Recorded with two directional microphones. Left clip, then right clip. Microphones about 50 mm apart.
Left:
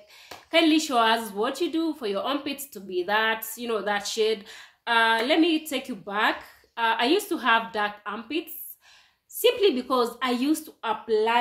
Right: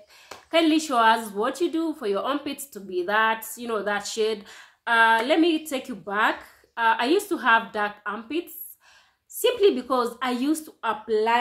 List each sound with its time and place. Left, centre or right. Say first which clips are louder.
0.5 s a woman's voice: even; centre
5.4 s a woman's voice: right 1 dB; right
6.0 s a woman's voice: right 2 dB; centre
9.4 s a woman's voice: right 1 dB; centre
11.1 s speech: even; right